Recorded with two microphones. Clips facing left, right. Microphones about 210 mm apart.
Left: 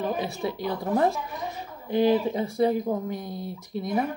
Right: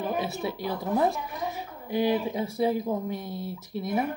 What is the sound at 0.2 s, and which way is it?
Speech, centre (ahead or behind).